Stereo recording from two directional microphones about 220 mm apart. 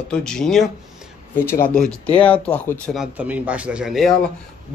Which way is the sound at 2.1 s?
5° left (ahead or behind).